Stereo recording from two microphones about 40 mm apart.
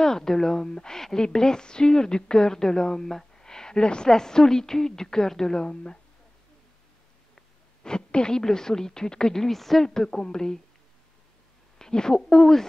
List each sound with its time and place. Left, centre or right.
0.0 s a woman's voice: centre
7.8 s a woman's voice: left
11.8 s a woman's voice: centre